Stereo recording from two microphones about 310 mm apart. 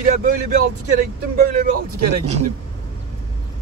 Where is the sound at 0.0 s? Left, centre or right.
Right.